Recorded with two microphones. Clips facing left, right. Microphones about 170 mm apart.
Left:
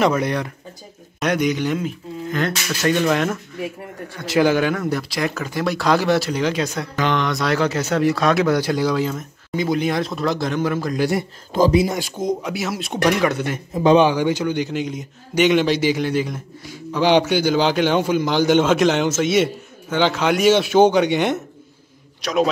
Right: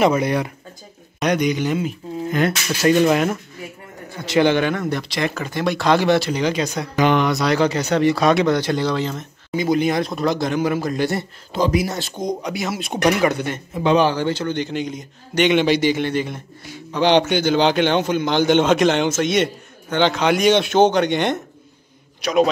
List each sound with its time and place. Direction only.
0.2 s a man's voice: 5° right (ahead or behind)
7.0 s a man's voice: 10° right (ahead or behind)
11.7 s speech: 20° left (ahead or behind)
12.0 s a man's voice: 5° left (ahead or behind)
13.9 s a man's voice: 15° left (ahead or behind)